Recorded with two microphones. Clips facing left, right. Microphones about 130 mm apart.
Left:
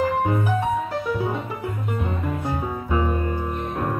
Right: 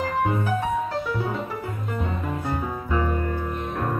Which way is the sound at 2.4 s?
15° left (ahead or behind).